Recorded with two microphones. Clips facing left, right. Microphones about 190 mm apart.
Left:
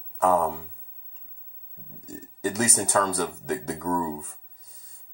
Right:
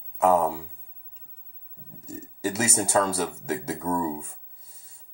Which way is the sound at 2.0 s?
5° right (ahead or behind).